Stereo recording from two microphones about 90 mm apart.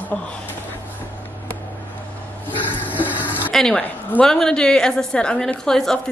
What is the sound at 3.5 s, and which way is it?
A woman's voice, 5° left (ahead or behind).